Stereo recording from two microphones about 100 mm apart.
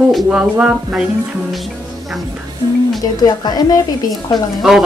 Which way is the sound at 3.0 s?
45° left (ahead or behind).